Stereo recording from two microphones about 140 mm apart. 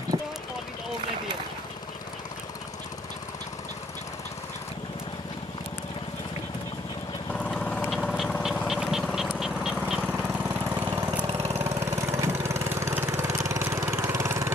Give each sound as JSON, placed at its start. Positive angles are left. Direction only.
{"t": 7.3, "sound": "vehicle", "side_deg": 10}
{"t": 10.7, "sound": "engine", "side_deg": -15}
{"t": 11.2, "sound": "engine", "side_deg": -50}
{"t": 11.5, "sound": "engine", "side_deg": -20}